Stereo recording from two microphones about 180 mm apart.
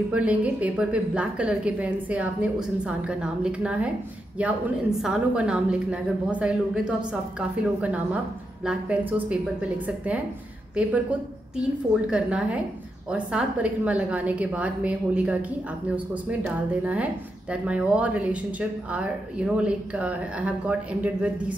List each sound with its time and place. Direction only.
0.1 s a woman's voice: 5° right (ahead or behind)
16.8 s a woman's voice: 5° right (ahead or behind)